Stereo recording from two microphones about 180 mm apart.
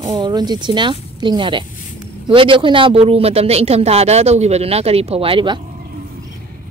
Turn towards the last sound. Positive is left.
turn(degrees=-30)  # may be behind; listen again after turning